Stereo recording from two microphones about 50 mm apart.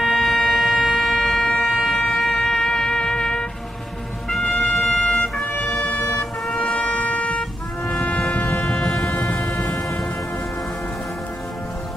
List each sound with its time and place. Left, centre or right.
0.0 s a sound: centre
0.5 s vehicle: centre
0.8 s siren: centre
1.4 s music: centre
5.5 s emergency vehicle: left
6.6 s vehicle: left
7.9 s foghorn: left
8.5 s siren: centre
9.0 s a sound: left